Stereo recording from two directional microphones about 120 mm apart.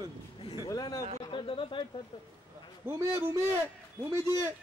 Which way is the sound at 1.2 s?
45° left (ahead or behind).